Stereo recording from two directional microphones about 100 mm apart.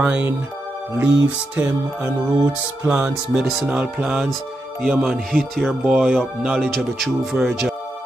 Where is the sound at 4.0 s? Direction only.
Centre (ahead or behind).